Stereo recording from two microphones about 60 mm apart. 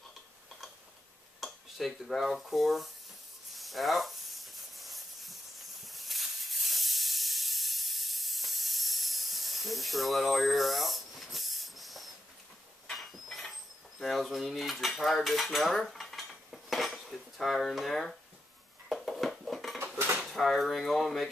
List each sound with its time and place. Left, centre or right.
1.4 s dishes: centre
3.5 s a sound: centre
13.9 s cutlery: centre
16.3 s dishes: centre
19.8 s dishes: right
20.2 s cutlery: centre